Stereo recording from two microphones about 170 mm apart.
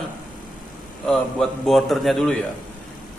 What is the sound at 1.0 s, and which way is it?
A man's voice, centre (ahead or behind).